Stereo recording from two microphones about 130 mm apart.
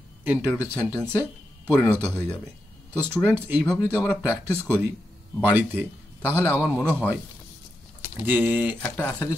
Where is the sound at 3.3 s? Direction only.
15° right (ahead or behind).